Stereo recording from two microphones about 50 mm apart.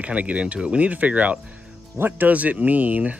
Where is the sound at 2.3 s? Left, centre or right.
Right.